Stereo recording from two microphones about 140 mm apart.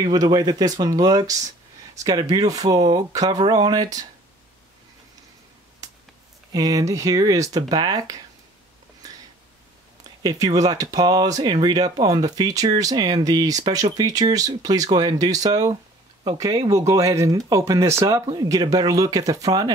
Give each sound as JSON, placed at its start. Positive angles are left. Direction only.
{"t": 0.0, "sound": "speech", "side_deg": -30}
{"t": 6.5, "sound": "speech", "side_deg": -25}
{"t": 10.2, "sound": "speech", "side_deg": -25}